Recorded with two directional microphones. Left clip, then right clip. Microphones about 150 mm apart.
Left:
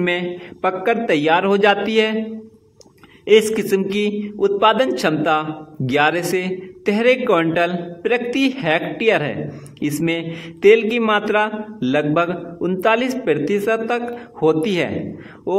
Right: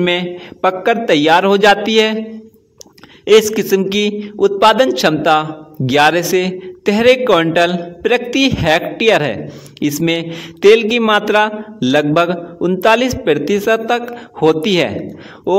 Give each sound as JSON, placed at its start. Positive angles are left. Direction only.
{"t": 0.0, "sound": "a man's voice", "side_deg": -30}
{"t": 3.3, "sound": "a man's voice", "side_deg": -30}